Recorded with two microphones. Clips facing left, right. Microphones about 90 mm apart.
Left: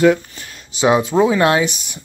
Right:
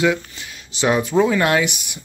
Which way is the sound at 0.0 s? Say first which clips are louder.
Left 5 dB; 45° left (ahead or behind).